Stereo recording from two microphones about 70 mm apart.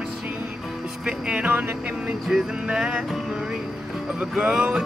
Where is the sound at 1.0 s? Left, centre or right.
Centre.